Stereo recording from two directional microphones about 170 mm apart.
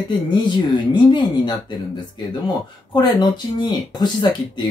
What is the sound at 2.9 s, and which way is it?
Speech, 25° left (ahead or behind).